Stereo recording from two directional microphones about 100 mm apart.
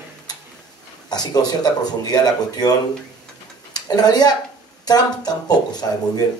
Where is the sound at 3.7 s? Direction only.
45° left (ahead or behind).